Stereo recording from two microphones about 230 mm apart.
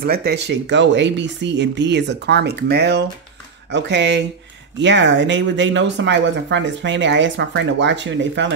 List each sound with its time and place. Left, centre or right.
0.0 s speech: right